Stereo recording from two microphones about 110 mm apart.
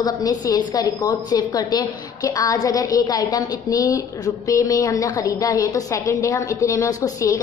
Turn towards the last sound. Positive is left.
turn(degrees=35)  # may be behind; listen again after turning